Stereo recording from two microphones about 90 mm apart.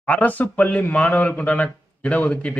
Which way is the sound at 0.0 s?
15° left (ahead or behind).